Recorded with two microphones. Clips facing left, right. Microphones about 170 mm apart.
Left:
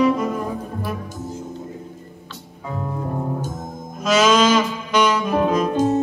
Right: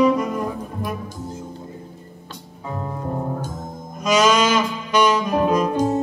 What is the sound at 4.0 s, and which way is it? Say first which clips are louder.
Music: even; 5° left (ahead or behind).